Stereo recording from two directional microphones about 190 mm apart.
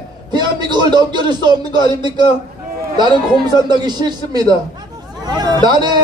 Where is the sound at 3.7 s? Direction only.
20° right (ahead or behind).